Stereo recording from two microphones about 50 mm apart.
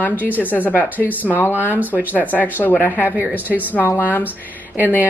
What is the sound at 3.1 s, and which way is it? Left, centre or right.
Speech, right.